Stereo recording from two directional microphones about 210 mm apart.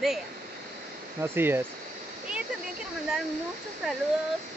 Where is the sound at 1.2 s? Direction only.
10° right (ahead or behind).